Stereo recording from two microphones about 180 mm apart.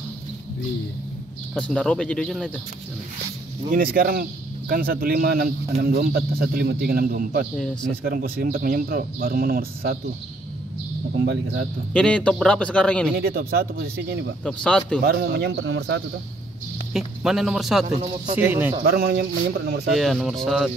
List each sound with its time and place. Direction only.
1.5 s speech: 5° left (ahead or behind)
3.7 s a man's voice: 50° right (ahead or behind)
7.5 s speech: centre (ahead or behind)
8.0 s speech: 55° right (ahead or behind)
11.1 s a man's voice: 70° right (ahead or behind)
11.9 s speech: 5° left (ahead or behind)
13.1 s a man's voice: 55° right (ahead or behind)
14.4 s speech: 5° left (ahead or behind)
15.0 s a man's voice: 60° right (ahead or behind); by 16.0 s 85° right
16.9 s speech: centre (ahead or behind)
17.8 s speech: 35° right (ahead or behind)
18.4 s speech: 10° right (ahead or behind)
18.9 s a man's voice: 60° right (ahead or behind)
20.0 s speech: centre (ahead or behind)